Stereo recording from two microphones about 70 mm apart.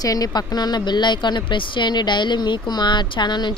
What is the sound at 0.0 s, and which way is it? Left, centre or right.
Speech, left.